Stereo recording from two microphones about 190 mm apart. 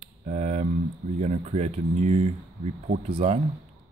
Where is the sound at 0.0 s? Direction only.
35° right (ahead or behind).